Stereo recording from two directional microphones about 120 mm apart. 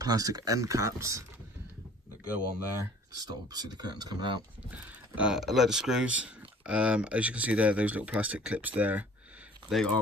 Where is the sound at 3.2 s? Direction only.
35° right (ahead or behind).